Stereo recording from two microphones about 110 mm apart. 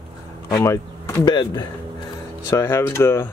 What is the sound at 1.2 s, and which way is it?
Speech, 40° left (ahead or behind).